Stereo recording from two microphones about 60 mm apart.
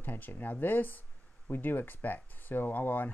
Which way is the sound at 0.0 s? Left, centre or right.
Left.